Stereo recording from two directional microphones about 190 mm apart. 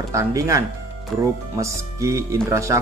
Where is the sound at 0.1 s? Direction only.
15° right (ahead or behind).